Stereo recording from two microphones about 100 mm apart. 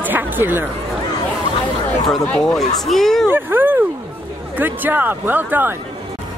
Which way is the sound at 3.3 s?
20° right (ahead or behind).